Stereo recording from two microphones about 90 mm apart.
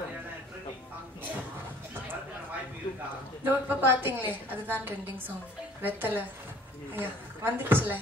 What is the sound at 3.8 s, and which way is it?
Speech, 25° right (ahead or behind).